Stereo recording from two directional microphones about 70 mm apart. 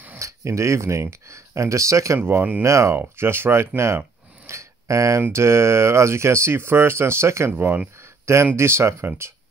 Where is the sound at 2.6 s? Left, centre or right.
Right.